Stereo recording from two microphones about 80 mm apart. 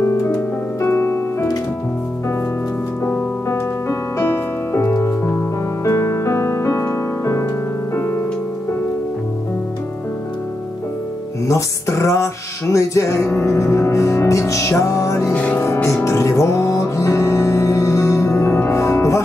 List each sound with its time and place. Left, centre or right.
0.7 s music: left
4.2 s music: left
11.4 s music: left
15.3 s music: centre
15.6 s music: left